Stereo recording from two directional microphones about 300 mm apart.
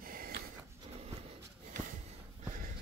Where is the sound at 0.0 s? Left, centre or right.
Right.